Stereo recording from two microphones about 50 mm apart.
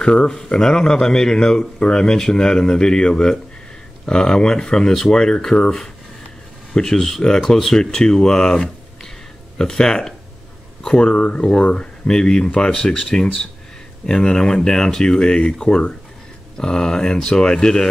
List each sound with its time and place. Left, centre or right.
0.0 s speech: centre